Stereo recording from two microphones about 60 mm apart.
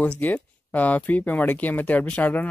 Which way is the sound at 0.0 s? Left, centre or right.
Left.